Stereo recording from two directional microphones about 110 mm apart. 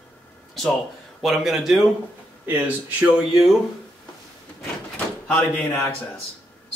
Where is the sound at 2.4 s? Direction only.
15° right (ahead or behind).